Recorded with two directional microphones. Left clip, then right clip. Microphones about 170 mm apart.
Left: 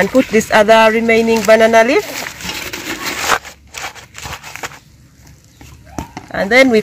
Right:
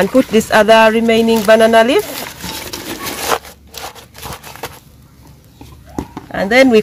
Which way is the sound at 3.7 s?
Centre (ahead or behind).